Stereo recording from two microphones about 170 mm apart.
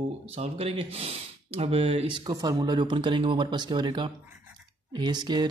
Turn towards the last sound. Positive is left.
turn(degrees=-25)  # may be behind; listen again after turning